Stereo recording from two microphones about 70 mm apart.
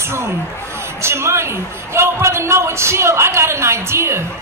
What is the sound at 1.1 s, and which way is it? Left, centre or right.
Speech, right.